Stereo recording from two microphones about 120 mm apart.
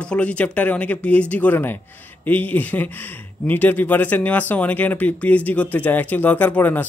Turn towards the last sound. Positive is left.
turn(degrees=15)  # may be behind; listen again after turning